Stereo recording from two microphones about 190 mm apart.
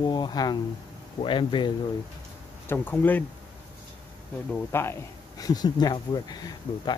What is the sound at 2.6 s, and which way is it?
Speech, 10° left (ahead or behind).